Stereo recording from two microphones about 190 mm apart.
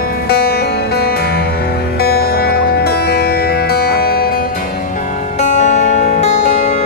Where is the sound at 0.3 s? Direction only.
55° left (ahead or behind).